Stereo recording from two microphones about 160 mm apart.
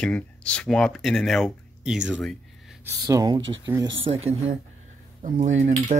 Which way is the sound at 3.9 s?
35° right (ahead or behind).